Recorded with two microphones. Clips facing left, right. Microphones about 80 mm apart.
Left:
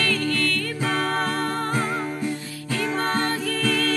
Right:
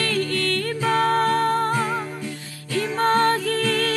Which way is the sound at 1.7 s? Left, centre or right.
Left.